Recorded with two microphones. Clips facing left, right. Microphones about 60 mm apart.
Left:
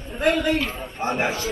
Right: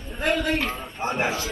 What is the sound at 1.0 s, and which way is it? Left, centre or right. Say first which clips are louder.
Speech: left 2 dB; right.